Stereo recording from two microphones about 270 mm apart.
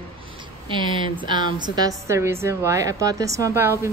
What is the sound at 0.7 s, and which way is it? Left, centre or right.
A woman's voice, centre.